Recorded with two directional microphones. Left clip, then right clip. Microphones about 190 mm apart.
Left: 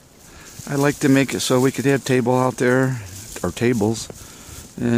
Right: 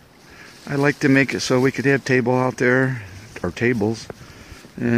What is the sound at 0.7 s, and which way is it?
Speech, 5° left (ahead or behind).